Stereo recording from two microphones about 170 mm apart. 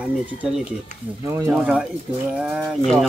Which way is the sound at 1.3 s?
15° right (ahead or behind).